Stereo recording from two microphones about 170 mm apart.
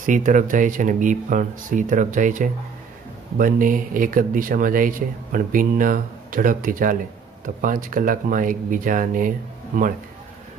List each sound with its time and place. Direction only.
0.0 s speech: 50° right (ahead or behind)